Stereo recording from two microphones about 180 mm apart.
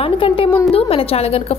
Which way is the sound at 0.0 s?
30° left (ahead or behind).